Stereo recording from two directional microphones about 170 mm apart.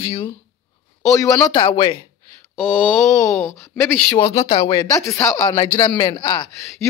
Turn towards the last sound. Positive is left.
turn(degrees=25)  # may be behind; listen again after turning